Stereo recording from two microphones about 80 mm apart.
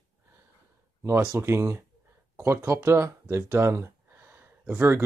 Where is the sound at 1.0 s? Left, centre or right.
Right.